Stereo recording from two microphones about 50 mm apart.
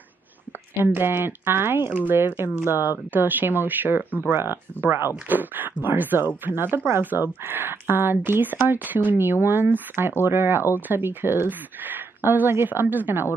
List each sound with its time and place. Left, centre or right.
0.9 s speech: right
5.3 s speech: right